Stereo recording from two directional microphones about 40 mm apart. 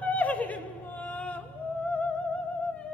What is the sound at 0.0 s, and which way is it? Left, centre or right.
Yodeling, left.